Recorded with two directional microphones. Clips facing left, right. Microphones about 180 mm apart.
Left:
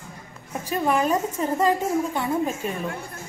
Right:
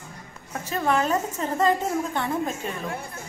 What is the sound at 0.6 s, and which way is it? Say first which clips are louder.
A woman's voice: left 1 dB; 10° left (ahead or behind).